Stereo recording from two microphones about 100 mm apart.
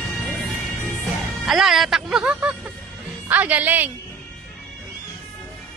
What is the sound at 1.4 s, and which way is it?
Speech, centre (ahead or behind).